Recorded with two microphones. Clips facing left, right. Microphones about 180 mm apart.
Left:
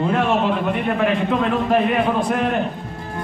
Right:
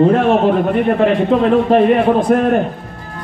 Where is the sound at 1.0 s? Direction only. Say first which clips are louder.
Right 5 dB; 35° right (ahead or behind).